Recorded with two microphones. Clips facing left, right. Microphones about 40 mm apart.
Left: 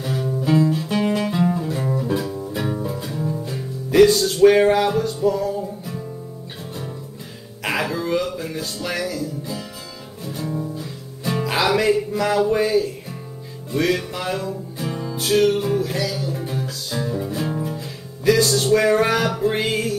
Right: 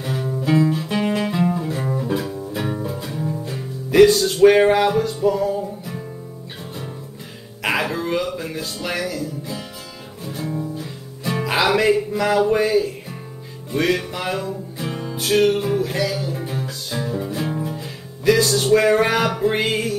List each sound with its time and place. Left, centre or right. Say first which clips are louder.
0.0 s music: even; centre
1.3 s music: even; centre
4.4 s speech: right 1 dB; right
5.2 s music: right 1 dB; centre
7.6 s music: right 1 dB; right
14.9 s music: left 1 dB; right
15.1 s music: even; centre